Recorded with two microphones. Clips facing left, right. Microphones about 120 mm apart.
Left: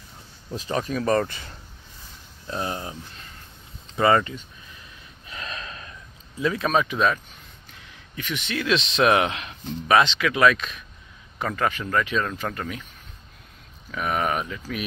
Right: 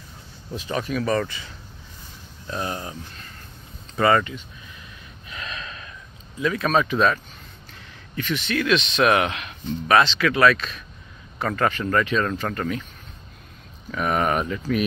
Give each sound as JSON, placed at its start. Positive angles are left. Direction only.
{"t": 0.6, "sound": "speech", "side_deg": 35}
{"t": 2.4, "sound": "speech", "side_deg": 20}
{"t": 5.3, "sound": "gasp", "side_deg": 35}
{"t": 6.4, "sound": "speech", "side_deg": 25}
{"t": 6.7, "sound": "speech", "side_deg": 10}
{"t": 8.2, "sound": "speech", "side_deg": 15}
{"t": 9.8, "sound": "speech", "side_deg": 15}
{"t": 13.9, "sound": "speech", "side_deg": 0}